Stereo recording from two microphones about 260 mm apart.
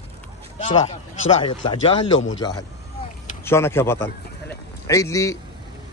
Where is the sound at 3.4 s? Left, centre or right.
Centre.